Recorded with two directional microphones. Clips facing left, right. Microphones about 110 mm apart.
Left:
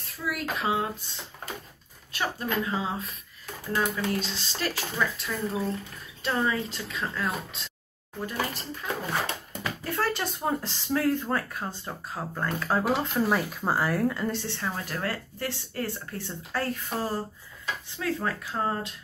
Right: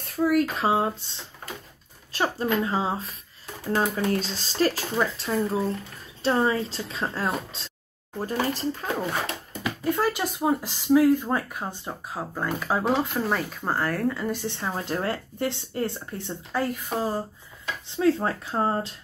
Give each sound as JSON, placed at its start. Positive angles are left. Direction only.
{"t": 0.0, "sound": "speech", "side_deg": -45}
{"t": 9.6, "sound": "speech", "side_deg": -15}
{"t": 12.8, "sound": "speech", "side_deg": 0}
{"t": 14.5, "sound": "speech", "side_deg": -20}
{"t": 17.8, "sound": "speech", "side_deg": -25}